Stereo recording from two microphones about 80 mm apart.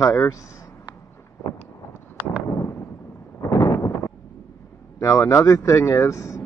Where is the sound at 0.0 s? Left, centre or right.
Left.